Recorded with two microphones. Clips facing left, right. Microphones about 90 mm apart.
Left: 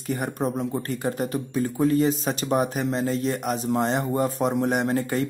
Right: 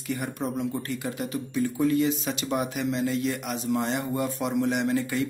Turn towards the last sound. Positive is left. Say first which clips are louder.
# left 2 dB
turn(degrees=40)  # may be behind; listen again after turning